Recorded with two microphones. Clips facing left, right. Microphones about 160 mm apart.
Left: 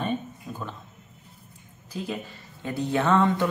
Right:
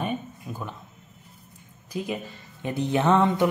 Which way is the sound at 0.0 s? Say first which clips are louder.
Left 1 dB; 10° right (ahead or behind).